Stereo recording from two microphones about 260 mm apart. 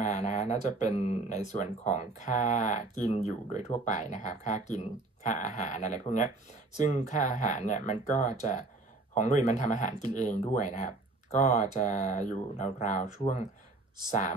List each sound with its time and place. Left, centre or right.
0.1 s speech: left